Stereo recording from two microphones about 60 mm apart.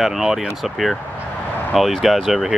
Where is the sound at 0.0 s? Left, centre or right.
Centre.